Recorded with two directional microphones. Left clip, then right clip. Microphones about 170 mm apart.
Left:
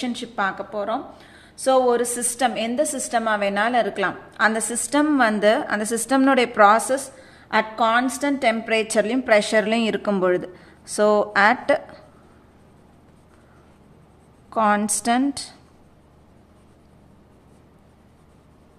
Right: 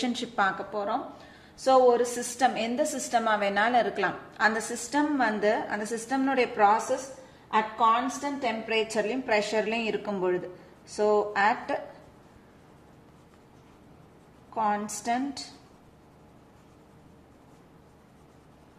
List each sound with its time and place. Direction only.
0.0 s a woman's voice: 10° left (ahead or behind)
0.7 s a woman's voice: 25° left (ahead or behind); by 11.8 s 45° left (ahead or behind)
14.5 s a woman's voice: 45° left (ahead or behind)